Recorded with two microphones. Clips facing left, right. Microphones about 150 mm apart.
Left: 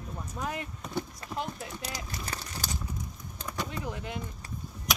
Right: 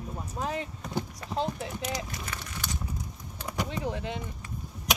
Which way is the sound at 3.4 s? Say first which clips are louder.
Right 3 dB; 15° right (ahead or behind).